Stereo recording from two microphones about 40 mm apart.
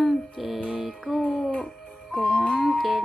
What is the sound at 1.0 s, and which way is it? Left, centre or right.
Music, centre.